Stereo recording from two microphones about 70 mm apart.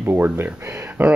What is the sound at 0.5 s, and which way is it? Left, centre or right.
Speech, right.